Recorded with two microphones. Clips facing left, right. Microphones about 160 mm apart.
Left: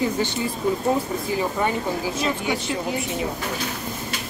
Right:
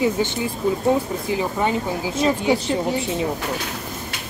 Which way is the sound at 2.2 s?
25° right (ahead or behind).